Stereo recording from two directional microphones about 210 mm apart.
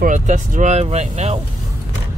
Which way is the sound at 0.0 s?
40° right (ahead or behind).